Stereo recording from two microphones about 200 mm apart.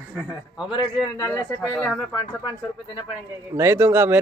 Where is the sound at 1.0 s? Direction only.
Centre (ahead or behind).